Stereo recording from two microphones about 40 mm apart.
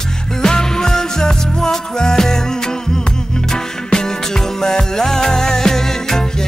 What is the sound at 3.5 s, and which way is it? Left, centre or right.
Music, centre.